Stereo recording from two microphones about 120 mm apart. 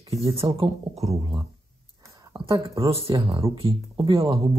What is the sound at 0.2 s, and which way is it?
Speech, 50° right (ahead or behind).